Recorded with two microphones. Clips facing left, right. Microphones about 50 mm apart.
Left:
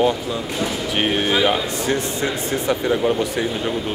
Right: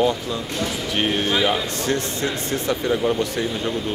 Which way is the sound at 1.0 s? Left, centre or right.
Centre.